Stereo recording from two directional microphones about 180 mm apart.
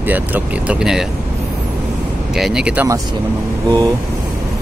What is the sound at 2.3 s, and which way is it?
Speech, 5° right (ahead or behind).